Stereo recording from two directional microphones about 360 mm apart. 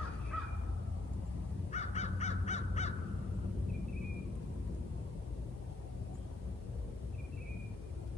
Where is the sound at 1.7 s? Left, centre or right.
Centre.